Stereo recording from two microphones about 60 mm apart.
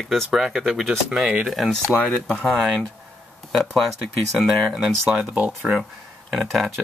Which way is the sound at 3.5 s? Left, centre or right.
Centre.